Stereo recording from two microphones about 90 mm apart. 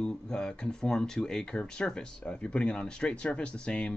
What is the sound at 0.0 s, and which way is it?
Speech, 10° left (ahead or behind).